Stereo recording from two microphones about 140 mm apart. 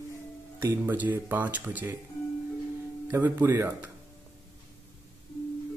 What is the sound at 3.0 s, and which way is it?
Speech, 15° right (ahead or behind).